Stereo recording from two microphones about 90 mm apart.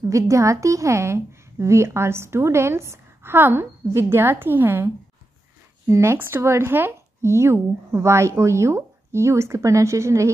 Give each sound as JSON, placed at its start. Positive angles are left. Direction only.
{"t": 0.1, "sound": "a woman's voice", "side_deg": -35}